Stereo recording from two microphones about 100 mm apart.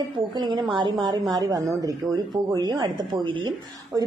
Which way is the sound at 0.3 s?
45° right (ahead or behind).